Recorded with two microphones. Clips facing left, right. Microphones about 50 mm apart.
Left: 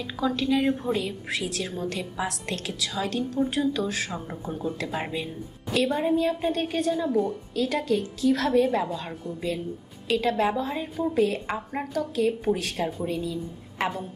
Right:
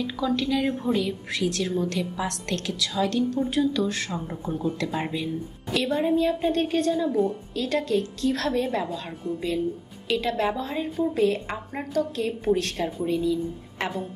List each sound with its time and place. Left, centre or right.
0.0 s a woman's voice: centre
10.0 s a woman's voice: centre